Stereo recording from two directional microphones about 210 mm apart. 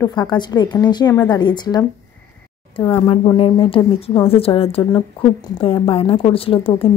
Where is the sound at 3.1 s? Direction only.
25° left (ahead or behind).